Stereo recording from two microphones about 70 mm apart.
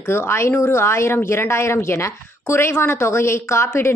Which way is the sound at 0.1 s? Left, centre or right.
Left.